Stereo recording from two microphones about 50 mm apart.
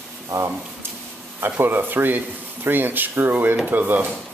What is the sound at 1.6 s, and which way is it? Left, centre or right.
Speech, right.